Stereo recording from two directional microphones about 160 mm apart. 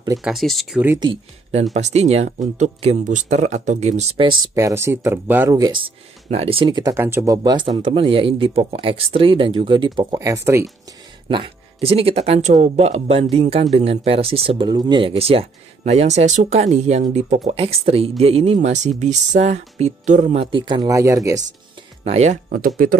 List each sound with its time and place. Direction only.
0.2 s speech: centre (ahead or behind)
0.8 s speech: 25° right (ahead or behind)
1.5 s speech: 45° right (ahead or behind)
4.3 s speech: 25° right (ahead or behind)
5.5 s speech: 25° right (ahead or behind)
11.2 s speech: 35° right (ahead or behind)
20.5 s speech: 30° right (ahead or behind)
20.9 s speech: 20° right (ahead or behind)
22.0 s speech: 45° right (ahead or behind)